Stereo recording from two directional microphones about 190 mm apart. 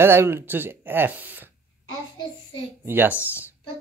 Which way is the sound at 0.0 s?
15° right (ahead or behind).